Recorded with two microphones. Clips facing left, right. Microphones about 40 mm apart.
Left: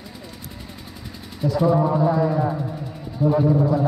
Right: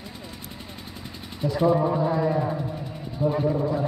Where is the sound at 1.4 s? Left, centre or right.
Right.